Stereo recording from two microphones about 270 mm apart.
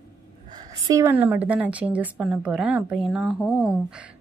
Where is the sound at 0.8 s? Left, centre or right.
Centre.